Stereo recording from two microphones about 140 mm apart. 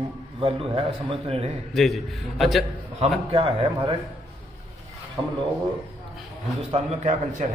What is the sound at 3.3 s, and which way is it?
Speech, 40° right (ahead or behind).